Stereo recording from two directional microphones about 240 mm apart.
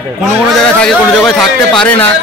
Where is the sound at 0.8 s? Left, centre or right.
Centre.